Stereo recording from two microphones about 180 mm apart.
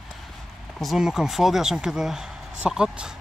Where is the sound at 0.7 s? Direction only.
Centre (ahead or behind).